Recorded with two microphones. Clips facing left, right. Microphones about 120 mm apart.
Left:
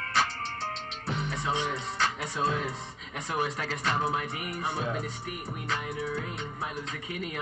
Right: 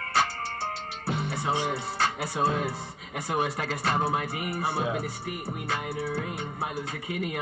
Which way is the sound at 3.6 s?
45° right (ahead or behind).